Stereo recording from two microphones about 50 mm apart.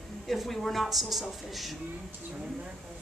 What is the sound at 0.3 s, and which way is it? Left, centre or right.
A child's voice, centre.